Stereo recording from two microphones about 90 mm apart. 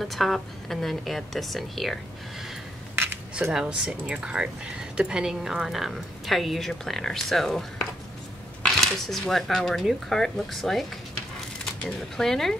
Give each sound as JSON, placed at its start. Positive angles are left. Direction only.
{"t": 0.0, "sound": "a woman's voice", "side_deg": 0}
{"t": 3.5, "sound": "a woman's voice", "side_deg": -10}